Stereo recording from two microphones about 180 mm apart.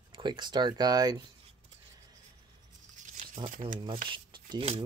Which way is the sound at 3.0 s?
40° right (ahead or behind).